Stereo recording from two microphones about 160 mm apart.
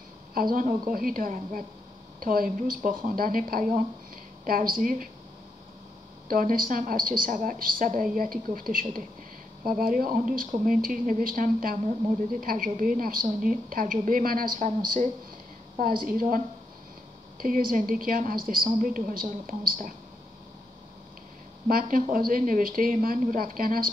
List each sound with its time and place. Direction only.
0.3 s a woman's voice: 65° right (ahead or behind)
6.2 s a woman's voice: 60° right (ahead or behind)
21.6 s a woman's voice: 60° right (ahead or behind)